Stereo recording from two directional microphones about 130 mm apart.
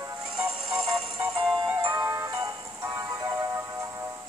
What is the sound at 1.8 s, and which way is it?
Music, 30° right (ahead or behind).